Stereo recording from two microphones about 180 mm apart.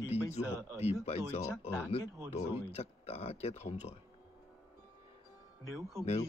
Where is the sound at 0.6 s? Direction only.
15° right (ahead or behind).